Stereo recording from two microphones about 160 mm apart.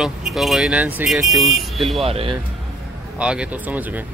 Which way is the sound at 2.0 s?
40° right (ahead or behind).